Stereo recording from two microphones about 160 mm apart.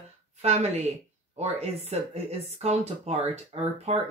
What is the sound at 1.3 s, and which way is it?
Speech, 40° right (ahead or behind).